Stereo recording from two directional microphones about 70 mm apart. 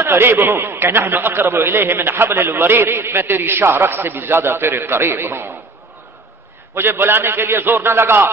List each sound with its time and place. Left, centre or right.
0.0 s a man's voice: right
6.7 s a man's voice: right